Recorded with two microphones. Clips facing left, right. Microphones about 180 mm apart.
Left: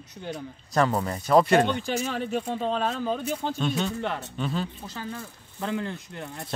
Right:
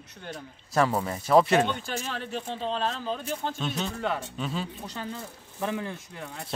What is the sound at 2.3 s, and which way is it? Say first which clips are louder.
Speech: left 4 dB; 50° left (ahead or behind).